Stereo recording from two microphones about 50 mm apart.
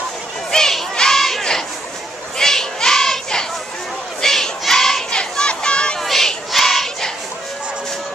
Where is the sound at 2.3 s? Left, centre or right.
Centre.